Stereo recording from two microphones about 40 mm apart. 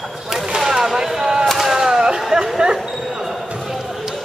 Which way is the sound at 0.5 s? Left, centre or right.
Centre.